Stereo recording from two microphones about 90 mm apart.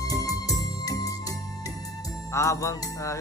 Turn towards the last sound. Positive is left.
turn(degrees=35)  # may be behind; listen again after turning